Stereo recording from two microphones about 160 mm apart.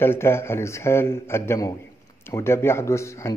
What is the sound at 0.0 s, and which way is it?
A man's voice, 15° left (ahead or behind).